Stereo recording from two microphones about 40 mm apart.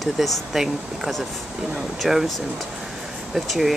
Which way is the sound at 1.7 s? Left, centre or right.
Centre.